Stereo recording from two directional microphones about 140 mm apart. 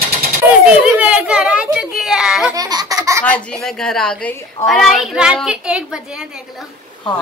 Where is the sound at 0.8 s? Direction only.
10° right (ahead or behind).